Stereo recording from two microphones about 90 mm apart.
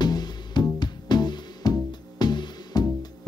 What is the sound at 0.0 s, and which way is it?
Music, 50° left (ahead or behind).